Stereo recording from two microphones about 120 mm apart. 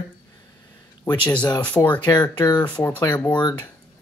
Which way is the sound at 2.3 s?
35° left (ahead or behind).